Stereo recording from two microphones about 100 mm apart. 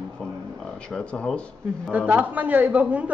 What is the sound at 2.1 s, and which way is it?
A woman's voice, 15° right (ahead or behind).